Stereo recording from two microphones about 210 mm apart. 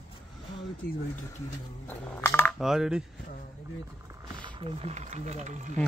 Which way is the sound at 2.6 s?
Centre (ahead or behind).